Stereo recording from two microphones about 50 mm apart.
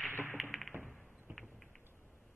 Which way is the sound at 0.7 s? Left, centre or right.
Right.